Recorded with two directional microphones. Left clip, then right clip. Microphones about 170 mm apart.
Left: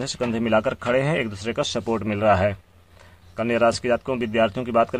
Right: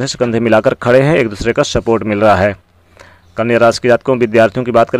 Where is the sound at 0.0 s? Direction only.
35° right (ahead or behind).